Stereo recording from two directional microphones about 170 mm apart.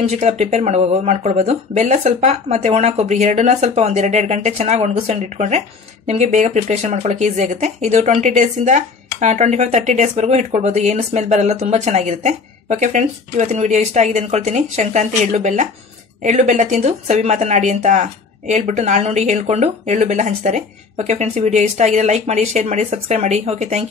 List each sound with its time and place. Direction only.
0.0 s speech: 40° right (ahead or behind)